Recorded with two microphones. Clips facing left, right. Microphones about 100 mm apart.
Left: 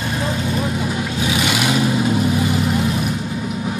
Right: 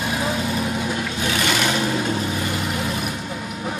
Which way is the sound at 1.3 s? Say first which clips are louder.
Left 1 dB; 5° left (ahead or behind).